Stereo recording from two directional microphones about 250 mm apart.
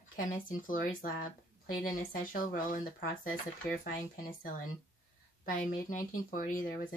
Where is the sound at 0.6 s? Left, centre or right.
Left.